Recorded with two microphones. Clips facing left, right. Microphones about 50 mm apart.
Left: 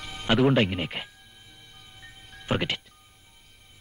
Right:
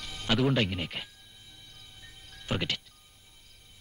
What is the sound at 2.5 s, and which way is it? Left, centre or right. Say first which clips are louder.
Speech: left 5 dB; left.